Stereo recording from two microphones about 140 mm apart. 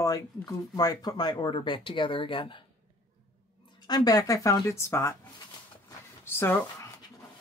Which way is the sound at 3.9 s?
30° left (ahead or behind).